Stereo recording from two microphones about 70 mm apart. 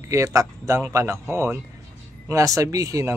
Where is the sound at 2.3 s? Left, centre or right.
Right.